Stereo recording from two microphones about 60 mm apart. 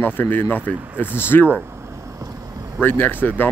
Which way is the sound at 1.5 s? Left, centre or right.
Right.